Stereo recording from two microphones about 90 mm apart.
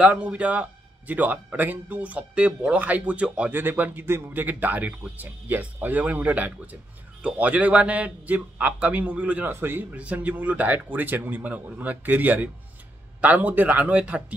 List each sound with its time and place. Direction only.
0.0 s a man's voice: 15° right (ahead or behind)